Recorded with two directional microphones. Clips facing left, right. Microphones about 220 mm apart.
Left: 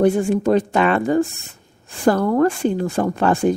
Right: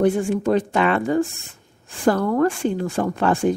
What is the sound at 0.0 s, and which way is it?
A woman's voice, 40° left (ahead or behind).